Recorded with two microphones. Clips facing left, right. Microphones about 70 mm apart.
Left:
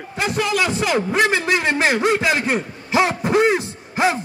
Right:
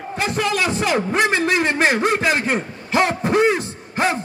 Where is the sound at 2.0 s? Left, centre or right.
Centre.